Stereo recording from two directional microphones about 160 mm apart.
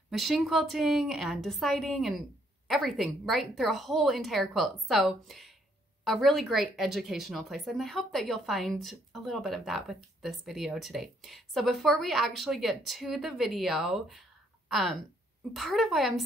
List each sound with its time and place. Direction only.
0.1 s a woman's voice: centre (ahead or behind)